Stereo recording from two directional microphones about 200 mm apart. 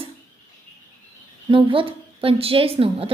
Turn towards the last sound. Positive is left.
turn(degrees=-30)  # may be behind; listen again after turning